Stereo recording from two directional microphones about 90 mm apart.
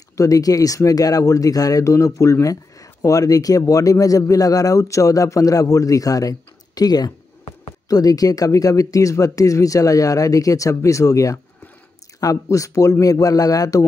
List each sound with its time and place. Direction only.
0.2 s speech: 40° left (ahead or behind)